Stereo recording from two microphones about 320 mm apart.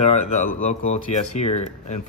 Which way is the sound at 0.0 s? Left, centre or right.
Left.